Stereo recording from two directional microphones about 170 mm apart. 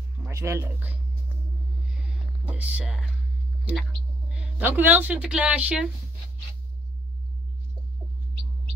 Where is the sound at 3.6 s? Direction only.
5° right (ahead or behind).